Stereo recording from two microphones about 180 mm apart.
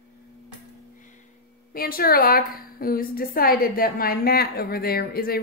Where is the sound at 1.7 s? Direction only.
55° left (ahead or behind).